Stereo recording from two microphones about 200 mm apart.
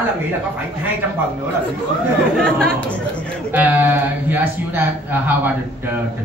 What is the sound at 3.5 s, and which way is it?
Speech, 10° right (ahead or behind).